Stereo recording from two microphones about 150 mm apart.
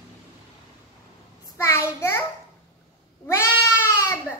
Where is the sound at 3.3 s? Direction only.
15° left (ahead or behind).